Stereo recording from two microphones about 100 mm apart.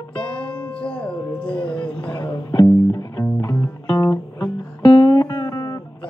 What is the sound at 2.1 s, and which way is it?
Music, 40° left (ahead or behind).